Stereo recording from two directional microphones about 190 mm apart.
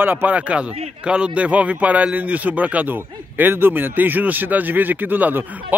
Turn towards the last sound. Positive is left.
turn(degrees=-10)  # may be behind; listen again after turning